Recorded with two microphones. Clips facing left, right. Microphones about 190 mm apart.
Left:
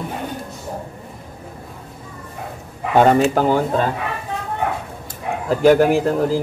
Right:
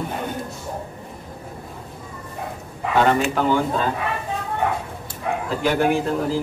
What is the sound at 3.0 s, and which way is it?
Speech, 40° left (ahead or behind).